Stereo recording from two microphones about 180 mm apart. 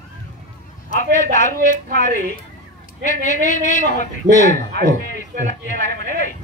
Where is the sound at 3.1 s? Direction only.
45° left (ahead or behind).